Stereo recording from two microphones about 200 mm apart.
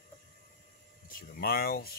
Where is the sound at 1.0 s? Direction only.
45° left (ahead or behind).